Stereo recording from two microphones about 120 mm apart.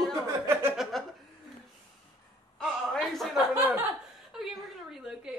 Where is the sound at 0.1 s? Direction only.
20° right (ahead or behind).